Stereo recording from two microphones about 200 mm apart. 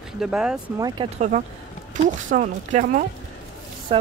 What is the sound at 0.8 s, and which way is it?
Speech, 20° right (ahead or behind).